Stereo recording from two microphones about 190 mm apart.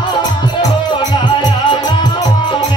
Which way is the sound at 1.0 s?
20° left (ahead or behind).